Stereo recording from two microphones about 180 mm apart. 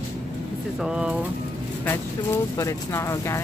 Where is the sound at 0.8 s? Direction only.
5° right (ahead or behind).